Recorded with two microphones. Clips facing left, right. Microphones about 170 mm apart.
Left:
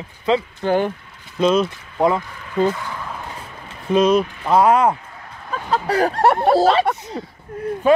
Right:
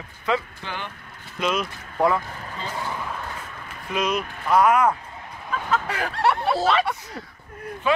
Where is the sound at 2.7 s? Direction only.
20° right (ahead or behind).